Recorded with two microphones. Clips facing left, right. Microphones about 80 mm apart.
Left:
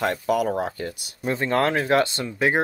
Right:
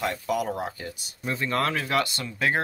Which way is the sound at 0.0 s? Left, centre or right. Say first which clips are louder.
Left 5 dB; left.